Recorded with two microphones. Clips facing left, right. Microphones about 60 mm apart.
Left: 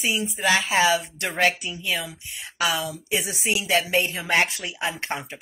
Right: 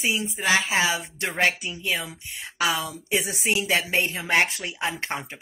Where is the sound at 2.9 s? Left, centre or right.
Right.